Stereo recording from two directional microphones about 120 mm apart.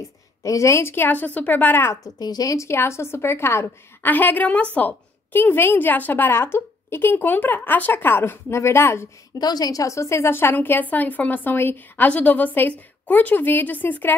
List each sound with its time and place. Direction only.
0.4 s a woman's voice: 25° left (ahead or behind)
2.1 s a woman's voice: 35° left (ahead or behind)
9.4 s a woman's voice: 35° left (ahead or behind); by 14.1 s 15° left (ahead or behind)